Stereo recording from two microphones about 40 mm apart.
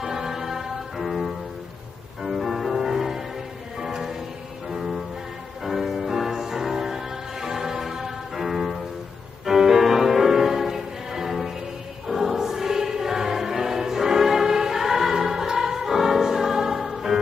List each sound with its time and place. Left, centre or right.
0.0 s music: centre
12.1 s choir: centre